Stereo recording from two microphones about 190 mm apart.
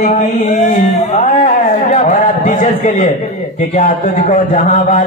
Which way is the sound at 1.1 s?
40° left (ahead or behind).